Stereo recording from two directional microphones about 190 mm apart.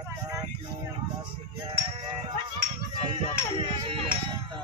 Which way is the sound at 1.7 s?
25° right (ahead or behind).